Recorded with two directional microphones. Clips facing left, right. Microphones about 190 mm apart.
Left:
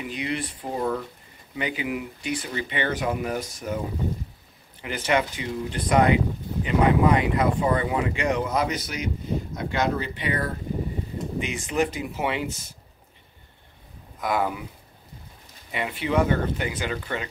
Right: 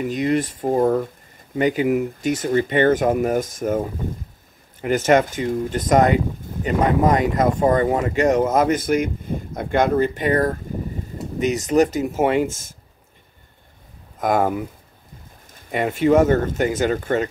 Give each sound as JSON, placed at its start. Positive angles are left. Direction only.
{"t": 0.0, "sound": "speech", "side_deg": -45}
{"t": 4.8, "sound": "speech", "side_deg": -45}
{"t": 14.2, "sound": "speech", "side_deg": -45}
{"t": 15.7, "sound": "speech", "side_deg": -45}